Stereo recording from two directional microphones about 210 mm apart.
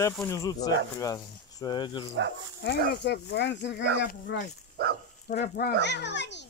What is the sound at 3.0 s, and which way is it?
Speech, 55° left (ahead or behind).